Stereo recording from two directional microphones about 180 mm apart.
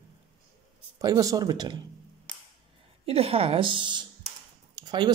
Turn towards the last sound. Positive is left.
turn(degrees=-25)  # may be behind; listen again after turning